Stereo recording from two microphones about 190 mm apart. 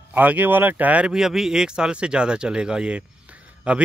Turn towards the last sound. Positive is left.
turn(degrees=-5)  # may be behind; listen again after turning